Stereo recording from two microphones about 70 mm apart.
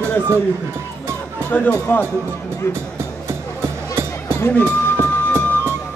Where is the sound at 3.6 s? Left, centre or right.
Right.